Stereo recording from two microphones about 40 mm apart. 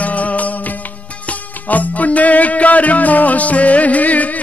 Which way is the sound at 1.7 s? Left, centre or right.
Left.